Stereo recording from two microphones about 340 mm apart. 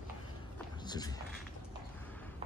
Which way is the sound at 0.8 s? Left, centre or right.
Centre.